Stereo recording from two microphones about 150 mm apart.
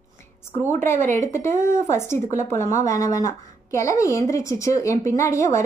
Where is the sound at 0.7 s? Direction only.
15° left (ahead or behind).